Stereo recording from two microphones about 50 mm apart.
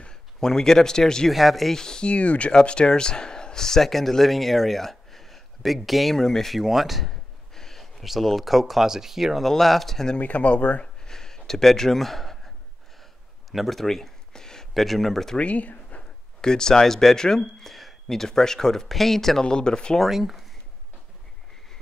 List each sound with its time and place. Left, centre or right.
0.0 s speech: centre
1.3 s speech: centre
2.1 s speech: left; by 10.1 s centre
10.1 s speech: left
11.1 s a sound: centre
13.5 s a sound: centre
14.7 s speech: centre
15.3 s speech: left
16.3 s speech: centre
19.4 s speech: centre
20.1 s speech: centre